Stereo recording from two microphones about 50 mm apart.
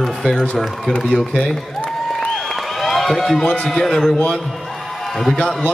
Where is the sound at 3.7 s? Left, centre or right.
Centre.